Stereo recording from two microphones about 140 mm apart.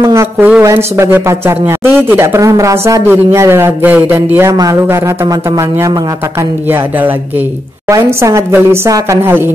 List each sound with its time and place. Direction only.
0.0 s a sound: 20° right (ahead or behind)
0.5 s a man's voice: 20° right (ahead or behind)
7.9 s a woman's voice: 20° right (ahead or behind)